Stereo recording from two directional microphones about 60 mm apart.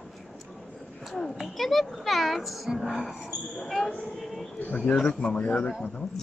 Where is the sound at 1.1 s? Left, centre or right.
Centre.